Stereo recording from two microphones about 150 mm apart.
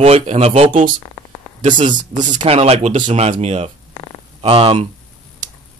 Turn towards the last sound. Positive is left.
turn(degrees=-40)  # may be behind; listen again after turning